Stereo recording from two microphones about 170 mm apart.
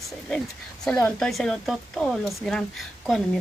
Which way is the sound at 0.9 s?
5° left (ahead or behind).